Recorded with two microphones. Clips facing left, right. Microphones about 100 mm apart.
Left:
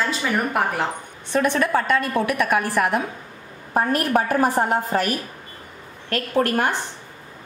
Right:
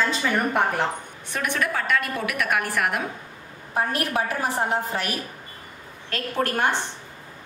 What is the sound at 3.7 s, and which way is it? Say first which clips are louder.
A woman's voice: left 5 dB; 50° left (ahead or behind).